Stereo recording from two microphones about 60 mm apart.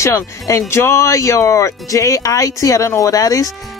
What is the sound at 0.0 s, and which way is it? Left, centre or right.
Speech, left.